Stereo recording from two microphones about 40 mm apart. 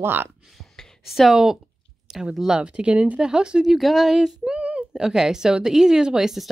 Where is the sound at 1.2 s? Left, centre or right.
Centre.